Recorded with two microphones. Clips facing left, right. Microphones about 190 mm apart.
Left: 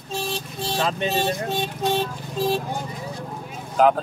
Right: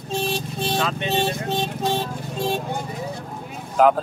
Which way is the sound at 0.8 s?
35° left (ahead or behind).